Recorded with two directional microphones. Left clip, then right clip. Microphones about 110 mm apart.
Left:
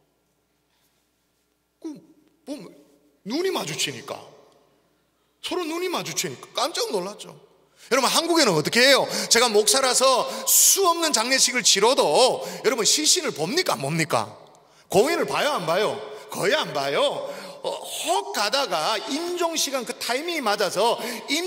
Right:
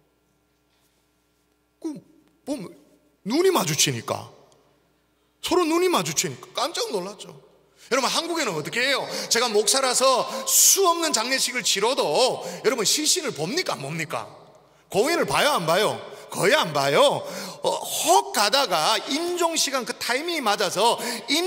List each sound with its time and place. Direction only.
1.8 s a sound: 25° right (ahead or behind)
3.3 s speech: 20° right (ahead or behind)
5.4 s speech: 30° right (ahead or behind)
6.4 s a man's voice: 10° left (ahead or behind)
8.3 s speech: 40° left (ahead or behind); by 11.1 s 5° left (ahead or behind)
11.1 s speech: 20° left (ahead or behind)
13.8 s a sound: 40° left (ahead or behind)
15.0 s speech: 5° right (ahead or behind)
16.3 s speech: 20° right (ahead or behind); by 18.2 s 35° right (ahead or behind)
18.3 s a man's voice: 15° right (ahead or behind)
19.7 s speech: 10° left (ahead or behind)